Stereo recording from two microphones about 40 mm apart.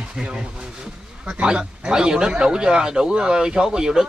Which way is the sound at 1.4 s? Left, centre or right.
Right.